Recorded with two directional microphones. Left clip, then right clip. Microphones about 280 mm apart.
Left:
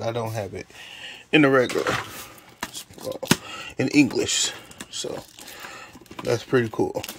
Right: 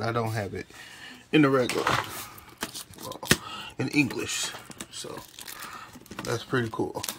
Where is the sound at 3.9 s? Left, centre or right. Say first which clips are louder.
Left 6 dB; centre.